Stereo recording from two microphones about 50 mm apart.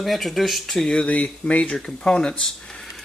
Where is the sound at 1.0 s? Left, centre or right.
Left.